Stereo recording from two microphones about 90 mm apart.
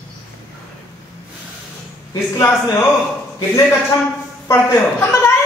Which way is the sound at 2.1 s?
30° left (ahead or behind).